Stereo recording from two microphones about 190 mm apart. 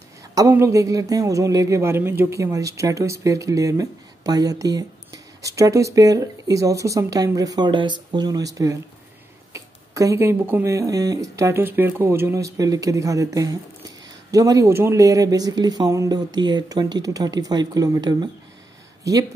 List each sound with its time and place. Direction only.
0.3 s a man's voice: 15° right (ahead or behind)